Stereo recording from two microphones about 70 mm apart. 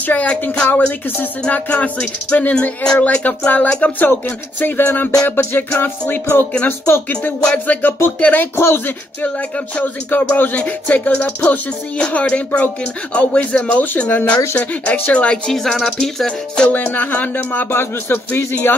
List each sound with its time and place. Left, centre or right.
0.0 s music: left
7.3 s music: centre
8.5 s music: left; by 14.4 s centre
14.6 s speech: centre
16.8 s music: left